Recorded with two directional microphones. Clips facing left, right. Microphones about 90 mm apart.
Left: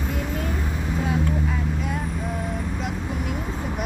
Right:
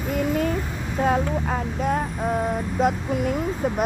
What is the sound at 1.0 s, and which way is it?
Speech, 45° right (ahead or behind).